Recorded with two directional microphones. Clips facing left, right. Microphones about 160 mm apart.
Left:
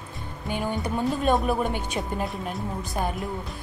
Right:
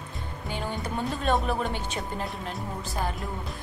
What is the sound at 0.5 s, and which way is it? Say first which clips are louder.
Speech: left 4 dB; 10° left (ahead or behind).